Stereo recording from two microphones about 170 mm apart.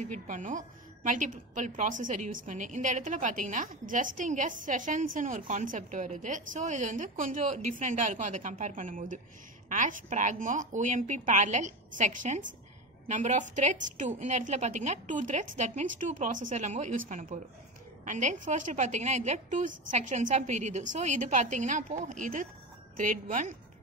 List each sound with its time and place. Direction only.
0.0 s a woman's voice: 45° right (ahead or behind)